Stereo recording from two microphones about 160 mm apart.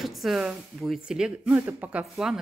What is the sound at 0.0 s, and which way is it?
Speech, centre (ahead or behind).